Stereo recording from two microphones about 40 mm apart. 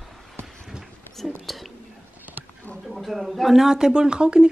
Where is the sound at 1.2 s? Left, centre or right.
Centre.